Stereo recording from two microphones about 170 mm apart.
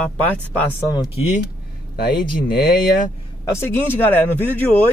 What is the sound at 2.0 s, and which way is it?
Speech, 65° left (ahead or behind).